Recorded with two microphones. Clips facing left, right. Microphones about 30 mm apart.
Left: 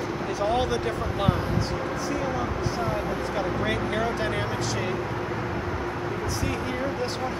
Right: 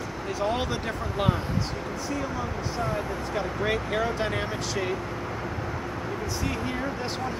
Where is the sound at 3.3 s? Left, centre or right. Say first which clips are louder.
Right 1 dB; centre.